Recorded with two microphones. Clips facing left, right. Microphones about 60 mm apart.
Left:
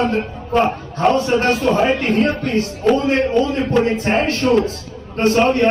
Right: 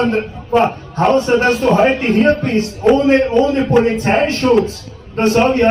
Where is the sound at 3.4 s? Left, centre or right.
Centre.